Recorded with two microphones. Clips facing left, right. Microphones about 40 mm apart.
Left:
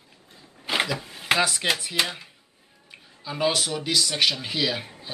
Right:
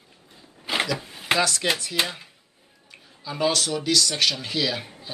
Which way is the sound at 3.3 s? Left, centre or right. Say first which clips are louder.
Right 1 dB; centre.